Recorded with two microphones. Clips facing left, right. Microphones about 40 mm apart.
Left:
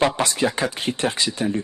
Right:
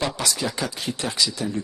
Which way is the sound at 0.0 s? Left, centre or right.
Left.